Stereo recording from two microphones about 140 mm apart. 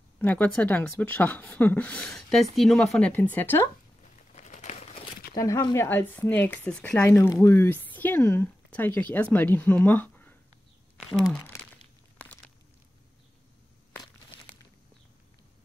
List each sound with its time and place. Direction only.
0.2 s speech: 10° left (ahead or behind)
4.4 s crumpling: 55° left (ahead or behind)
5.3 s speech: 25° left (ahead or behind)
5.9 s speech: 15° left (ahead or behind)
7.1 s speech: 20° left (ahead or behind)